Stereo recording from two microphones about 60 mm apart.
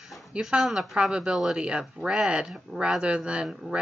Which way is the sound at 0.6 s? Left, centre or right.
Centre.